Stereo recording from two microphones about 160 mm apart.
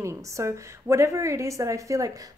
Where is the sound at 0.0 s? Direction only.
20° right (ahead or behind).